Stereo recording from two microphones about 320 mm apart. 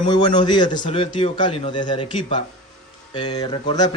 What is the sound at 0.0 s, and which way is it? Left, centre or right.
Speech, centre.